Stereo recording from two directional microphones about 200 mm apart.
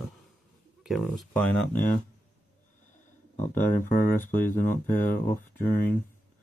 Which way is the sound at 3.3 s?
40° left (ahead or behind).